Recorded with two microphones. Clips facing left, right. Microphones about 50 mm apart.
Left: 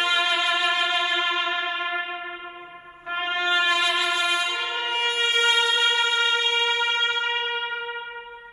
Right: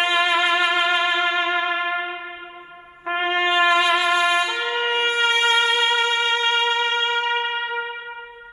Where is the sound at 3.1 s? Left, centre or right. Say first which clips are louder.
Right 4 dB; right.